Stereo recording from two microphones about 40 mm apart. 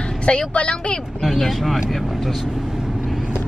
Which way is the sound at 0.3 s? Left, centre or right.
Left.